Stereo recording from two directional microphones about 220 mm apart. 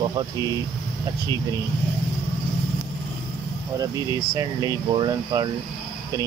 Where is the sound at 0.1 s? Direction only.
20° right (ahead or behind).